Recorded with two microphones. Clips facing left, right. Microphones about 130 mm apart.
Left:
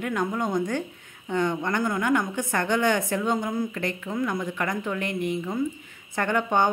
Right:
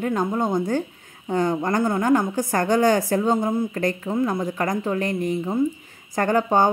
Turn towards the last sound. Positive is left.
turn(degrees=-35)  # may be behind; listen again after turning